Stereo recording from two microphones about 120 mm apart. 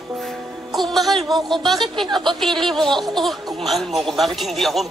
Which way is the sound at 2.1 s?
40° right (ahead or behind).